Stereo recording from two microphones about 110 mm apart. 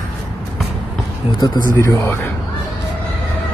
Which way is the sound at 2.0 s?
25° left (ahead or behind).